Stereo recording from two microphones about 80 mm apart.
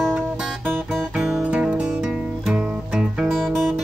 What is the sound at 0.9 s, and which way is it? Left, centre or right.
Music, centre.